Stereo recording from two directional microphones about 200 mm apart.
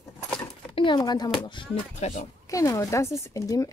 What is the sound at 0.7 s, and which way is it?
Speech, 20° left (ahead or behind).